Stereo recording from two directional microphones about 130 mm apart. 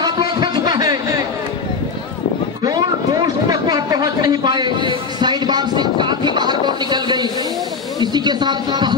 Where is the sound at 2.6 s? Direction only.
30° right (ahead or behind).